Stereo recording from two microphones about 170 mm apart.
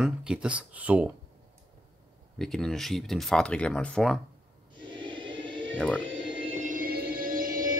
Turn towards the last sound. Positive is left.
turn(degrees=-55)  # may be behind; listen again after turning